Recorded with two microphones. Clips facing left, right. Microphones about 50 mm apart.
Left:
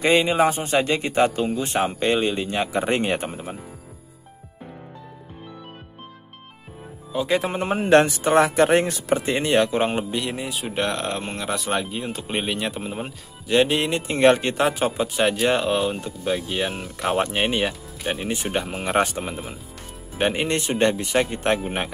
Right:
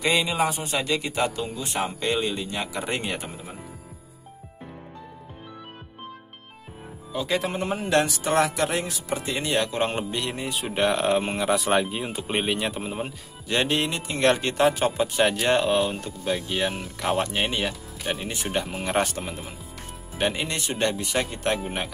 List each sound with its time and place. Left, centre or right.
0.0 s a man's voice: left
7.2 s speech: centre
7.7 s a man's voice: left
8.6 s speech: left
9.1 s speech: left
9.6 s speech: centre
13.9 s speech: left
14.3 s speech: centre
17.2 s speech: left
18.0 s speech: centre
20.4 s speech: left